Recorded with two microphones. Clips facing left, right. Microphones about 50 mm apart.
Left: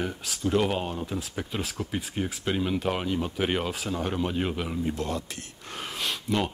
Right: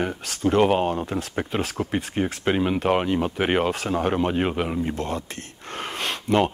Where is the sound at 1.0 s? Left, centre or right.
Right.